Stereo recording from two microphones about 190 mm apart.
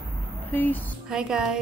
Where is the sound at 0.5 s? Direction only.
10° left (ahead or behind).